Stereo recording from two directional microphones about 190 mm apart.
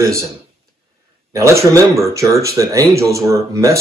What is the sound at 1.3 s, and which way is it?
Speech, 15° right (ahead or behind).